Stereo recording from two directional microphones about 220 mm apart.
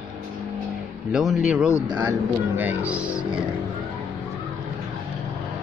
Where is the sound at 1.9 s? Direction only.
20° right (ahead or behind).